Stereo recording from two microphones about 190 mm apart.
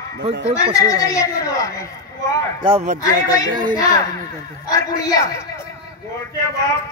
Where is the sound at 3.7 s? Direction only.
20° left (ahead or behind).